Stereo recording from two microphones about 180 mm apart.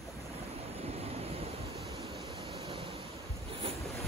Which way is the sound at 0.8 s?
35° right (ahead or behind).